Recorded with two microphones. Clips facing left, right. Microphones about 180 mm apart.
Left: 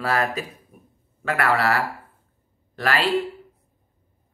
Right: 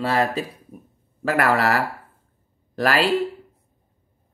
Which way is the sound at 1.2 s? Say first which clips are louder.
Right 2 dB; 40° right (ahead or behind).